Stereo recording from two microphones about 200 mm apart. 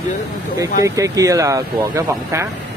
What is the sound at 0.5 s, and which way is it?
Speech, 15° right (ahead or behind).